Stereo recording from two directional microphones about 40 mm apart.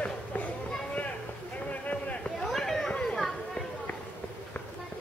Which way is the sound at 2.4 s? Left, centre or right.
Centre.